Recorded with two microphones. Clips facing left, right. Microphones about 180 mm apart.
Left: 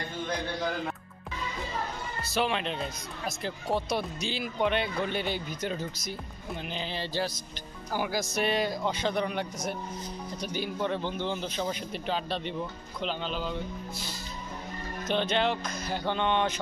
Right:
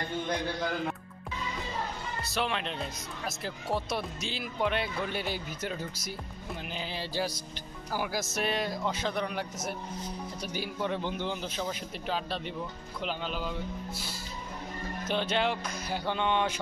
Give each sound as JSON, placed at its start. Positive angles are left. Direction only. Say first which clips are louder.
{"t": 2.2, "sound": "speech", "louder": "left 4 dB", "side_deg": 0}